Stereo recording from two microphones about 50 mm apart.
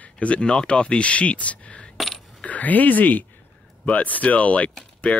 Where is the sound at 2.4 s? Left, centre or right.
Left.